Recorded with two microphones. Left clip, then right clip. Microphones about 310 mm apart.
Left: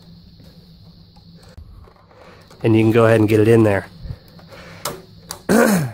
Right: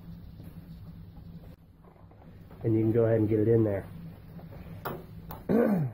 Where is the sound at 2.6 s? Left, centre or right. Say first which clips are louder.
Left 12 dB; left.